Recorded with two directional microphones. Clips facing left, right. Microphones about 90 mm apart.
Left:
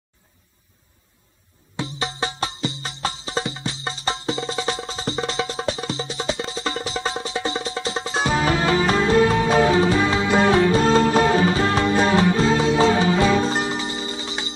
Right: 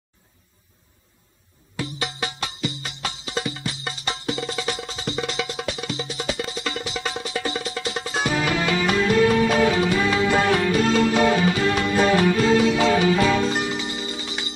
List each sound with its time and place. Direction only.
1.8 s music: 30° left (ahead or behind)